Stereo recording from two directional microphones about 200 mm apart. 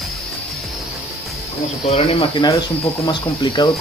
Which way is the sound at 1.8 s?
30° left (ahead or behind).